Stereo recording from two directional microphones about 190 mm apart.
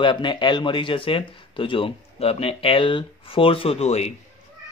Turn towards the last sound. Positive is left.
turn(degrees=35)  # may be behind; listen again after turning